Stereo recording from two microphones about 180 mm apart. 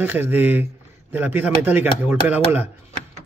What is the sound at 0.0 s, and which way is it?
A man's voice, 10° right (ahead or behind).